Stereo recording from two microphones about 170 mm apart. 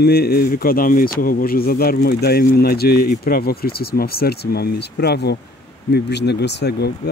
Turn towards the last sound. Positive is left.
turn(degrees=80)